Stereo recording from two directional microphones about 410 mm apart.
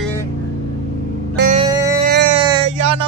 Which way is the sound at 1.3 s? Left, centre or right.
Centre.